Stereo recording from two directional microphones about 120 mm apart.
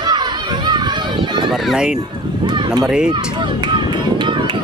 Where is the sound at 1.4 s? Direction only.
Centre (ahead or behind).